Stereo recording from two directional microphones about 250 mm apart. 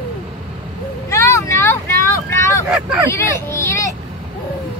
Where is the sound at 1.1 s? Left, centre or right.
Centre.